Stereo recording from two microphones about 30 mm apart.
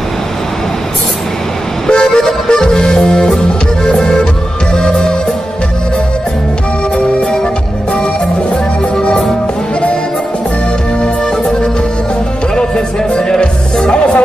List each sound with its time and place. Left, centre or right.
1.9 s music: left
11.0 s music: left